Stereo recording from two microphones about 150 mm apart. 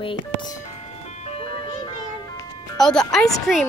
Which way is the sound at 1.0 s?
50° left (ahead or behind).